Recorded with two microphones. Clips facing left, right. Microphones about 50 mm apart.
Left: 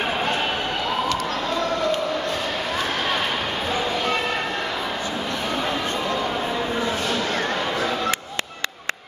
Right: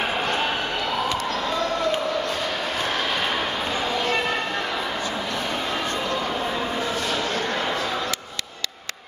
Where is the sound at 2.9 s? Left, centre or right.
Centre.